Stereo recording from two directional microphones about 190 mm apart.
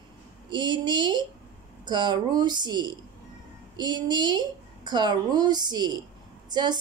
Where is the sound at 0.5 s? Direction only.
25° right (ahead or behind).